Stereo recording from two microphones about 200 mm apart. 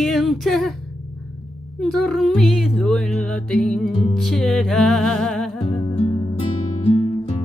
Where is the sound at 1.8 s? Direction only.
Centre (ahead or behind).